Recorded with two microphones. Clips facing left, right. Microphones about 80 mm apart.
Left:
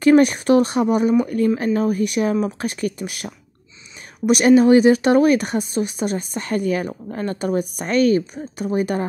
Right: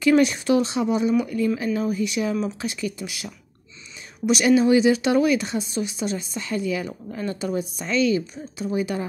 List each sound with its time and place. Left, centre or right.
0.0 s speech: left